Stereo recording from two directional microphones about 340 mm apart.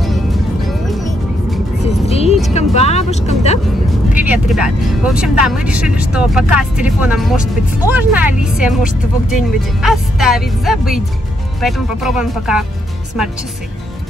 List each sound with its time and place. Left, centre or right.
0.0 s music: centre
1.9 s music: centre
2.4 s vehicle: centre
4.2 s speech: centre